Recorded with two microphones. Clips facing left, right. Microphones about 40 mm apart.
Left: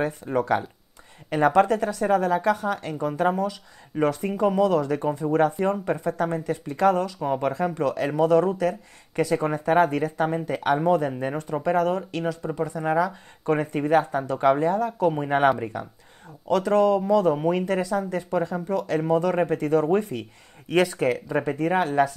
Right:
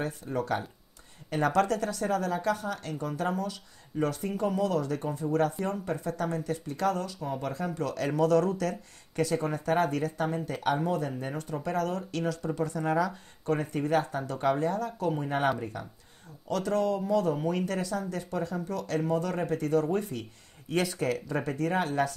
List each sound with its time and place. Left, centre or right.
0.0 s speech: left
1.4 s speech: left
7.2 s speech: left